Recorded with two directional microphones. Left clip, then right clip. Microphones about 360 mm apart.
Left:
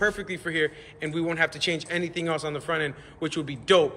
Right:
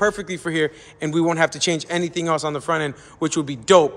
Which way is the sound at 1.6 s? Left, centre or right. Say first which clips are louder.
Right 5 dB; centre.